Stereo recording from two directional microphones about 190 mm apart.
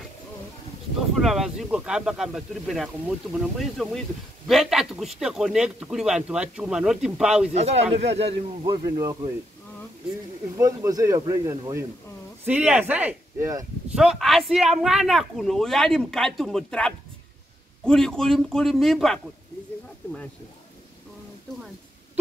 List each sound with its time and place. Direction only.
1.1 s speech: centre (ahead or behind)
7.5 s speech: 35° right (ahead or behind)
10.5 s speech: 15° right (ahead or behind)
13.9 s speech: centre (ahead or behind)